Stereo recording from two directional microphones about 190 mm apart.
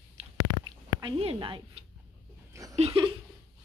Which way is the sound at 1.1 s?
30° right (ahead or behind).